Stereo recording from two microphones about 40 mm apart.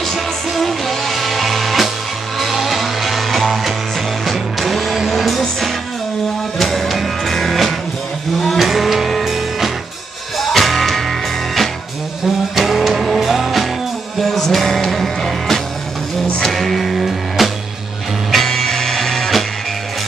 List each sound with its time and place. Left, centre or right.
0.5 s music: centre
14.2 s music: centre
16.3 s music: centre
16.5 s music: centre
18.3 s music: centre